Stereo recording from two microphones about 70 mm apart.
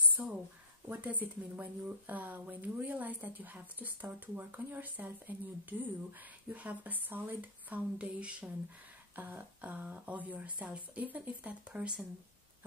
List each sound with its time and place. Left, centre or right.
0.1 s a sound: centre
0.8 s speech: right
8.0 s speech: centre
9.1 s speech: right